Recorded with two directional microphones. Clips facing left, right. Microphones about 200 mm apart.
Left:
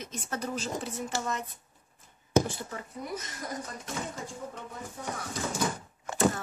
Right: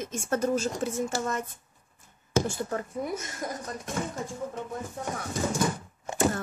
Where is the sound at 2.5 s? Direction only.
45° right (ahead or behind).